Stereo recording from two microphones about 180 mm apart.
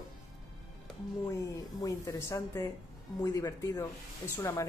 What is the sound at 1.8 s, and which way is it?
Speech, 20° left (ahead or behind).